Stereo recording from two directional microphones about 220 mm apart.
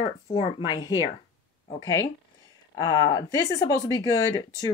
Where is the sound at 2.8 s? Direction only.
15° left (ahead or behind).